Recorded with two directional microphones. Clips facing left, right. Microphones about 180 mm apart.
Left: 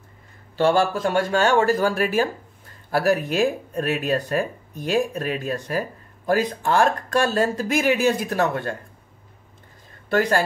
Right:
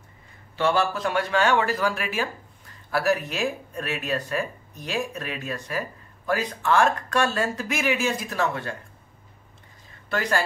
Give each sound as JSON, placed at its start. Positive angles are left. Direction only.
{"t": 0.6, "sound": "speech", "side_deg": 50}
{"t": 7.6, "sound": "speech", "side_deg": 45}
{"t": 10.0, "sound": "a woman's voice", "side_deg": 50}